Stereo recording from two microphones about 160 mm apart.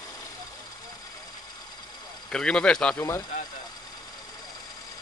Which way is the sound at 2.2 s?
5° left (ahead or behind).